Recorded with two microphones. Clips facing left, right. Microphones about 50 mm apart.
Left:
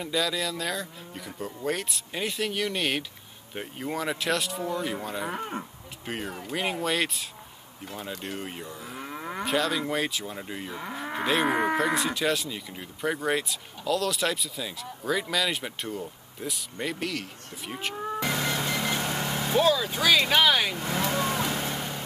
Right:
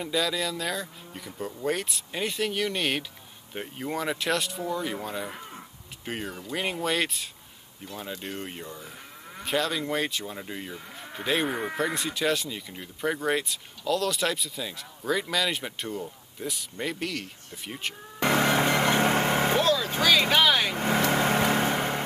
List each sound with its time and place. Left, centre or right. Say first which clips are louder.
0.0 s speech: even; centre
8.7 s moo: left 6 dB; left
9.5 s speech: even; centre
11.4 s speech: left 5 dB; left
11.8 s speech: left 2 dB; centre
18.2 s vehicle: right 8 dB; right
19.6 s vehicle: left 1 dB; centre
20.0 s speech: right 1 dB; centre
20.7 s vehicle: right 4 dB; right